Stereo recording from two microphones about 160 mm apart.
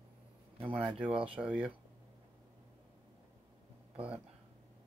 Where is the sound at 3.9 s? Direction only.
10° right (ahead or behind).